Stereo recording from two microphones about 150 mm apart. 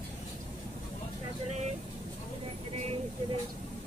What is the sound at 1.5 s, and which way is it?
Vehicle, 50° right (ahead or behind).